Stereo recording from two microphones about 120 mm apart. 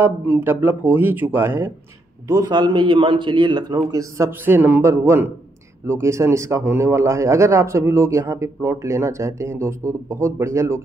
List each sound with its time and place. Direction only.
0.0 s speech: 20° right (ahead or behind)
2.2 s speech: 30° right (ahead or behind)